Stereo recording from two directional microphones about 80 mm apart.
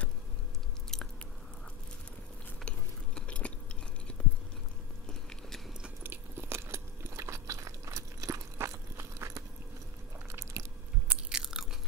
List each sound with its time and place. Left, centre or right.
0.9 s biting: centre
3.2 s biting: centre
4.1 s chewing: centre
6.0 s biting: right
10.3 s a sound: right
11.1 s biting: centre